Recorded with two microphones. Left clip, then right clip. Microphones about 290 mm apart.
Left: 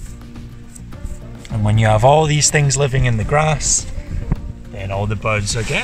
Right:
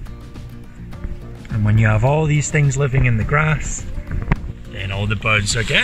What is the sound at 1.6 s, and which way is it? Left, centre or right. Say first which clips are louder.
Speech: left 6 dB; left.